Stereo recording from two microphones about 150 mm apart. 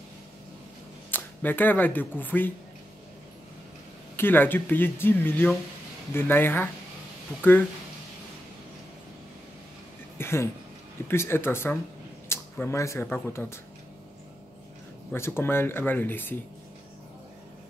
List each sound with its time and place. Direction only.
1.1 s speech: 10° left (ahead or behind)
4.2 s speech: 15° left (ahead or behind)
10.1 s a sound: 15° left (ahead or behind)
11.1 s speech: 15° left (ahead or behind)
15.1 s speech: 15° left (ahead or behind)